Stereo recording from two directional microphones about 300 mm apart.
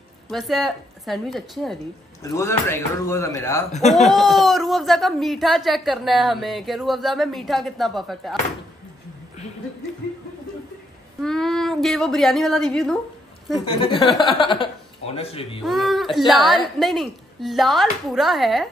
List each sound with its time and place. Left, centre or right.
0.3 s speech: centre
11.1 s a woman's voice: centre
13.7 s speech: centre
15.6 s speech: centre